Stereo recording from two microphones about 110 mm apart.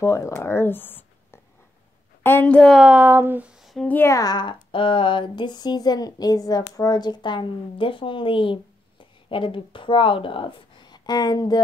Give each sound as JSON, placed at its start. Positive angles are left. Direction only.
{"t": 0.0, "sound": "a woman's voice", "side_deg": 25}
{"t": 2.7, "sound": "speech", "side_deg": -10}
{"t": 3.5, "sound": "a sound", "side_deg": 0}
{"t": 3.8, "sound": "a woman's voice", "side_deg": 15}
{"t": 4.1, "sound": "a sound", "side_deg": 35}
{"t": 6.6, "sound": "speech", "side_deg": 40}